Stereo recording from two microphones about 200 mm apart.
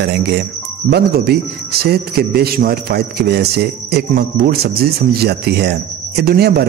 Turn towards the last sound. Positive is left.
turn(degrees=-50)  # may be behind; listen again after turning